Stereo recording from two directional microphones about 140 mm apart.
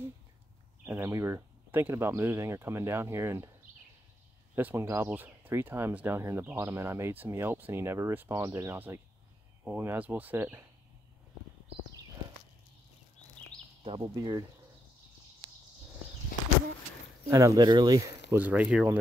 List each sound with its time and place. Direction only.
0.8 s speech: 20° right (ahead or behind)
4.6 s speech: 15° right (ahead or behind)
14.0 s speech: 30° right (ahead or behind)
17.3 s speech: 20° right (ahead or behind)
18.4 s speech: 10° right (ahead or behind)